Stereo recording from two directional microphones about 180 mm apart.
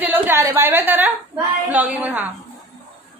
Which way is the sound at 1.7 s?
10° right (ahead or behind).